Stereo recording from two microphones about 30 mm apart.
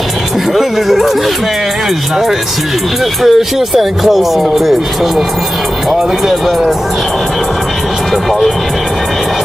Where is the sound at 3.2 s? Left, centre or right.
Centre.